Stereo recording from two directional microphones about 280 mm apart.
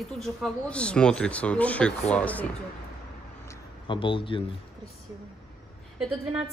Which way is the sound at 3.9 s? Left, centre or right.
Centre.